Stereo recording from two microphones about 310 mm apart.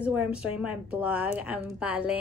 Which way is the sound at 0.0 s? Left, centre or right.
Centre.